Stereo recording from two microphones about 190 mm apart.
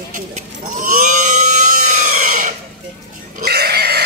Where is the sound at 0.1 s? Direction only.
45° right (ahead or behind).